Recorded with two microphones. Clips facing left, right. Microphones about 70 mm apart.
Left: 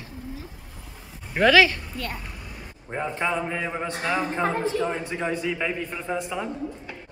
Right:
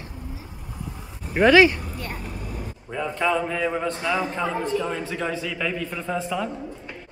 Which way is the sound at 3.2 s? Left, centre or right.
Centre.